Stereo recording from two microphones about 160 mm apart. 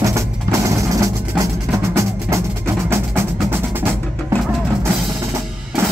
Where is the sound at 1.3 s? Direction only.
5° right (ahead or behind).